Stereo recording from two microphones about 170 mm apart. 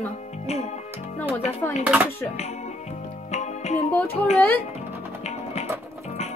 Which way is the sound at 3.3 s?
40° left (ahead or behind).